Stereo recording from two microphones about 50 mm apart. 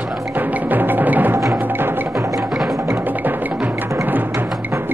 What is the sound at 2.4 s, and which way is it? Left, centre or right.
Wood block, centre.